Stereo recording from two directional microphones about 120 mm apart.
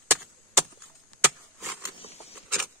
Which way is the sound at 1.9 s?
55° left (ahead or behind).